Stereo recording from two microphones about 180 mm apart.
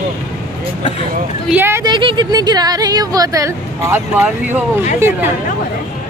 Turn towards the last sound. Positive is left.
turn(degrees=-15)  # may be behind; listen again after turning